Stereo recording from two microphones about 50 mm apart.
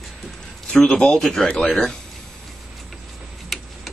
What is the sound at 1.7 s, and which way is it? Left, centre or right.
Speech, centre.